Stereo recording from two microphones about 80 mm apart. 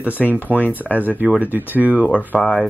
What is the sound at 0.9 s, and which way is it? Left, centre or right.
Speech, left.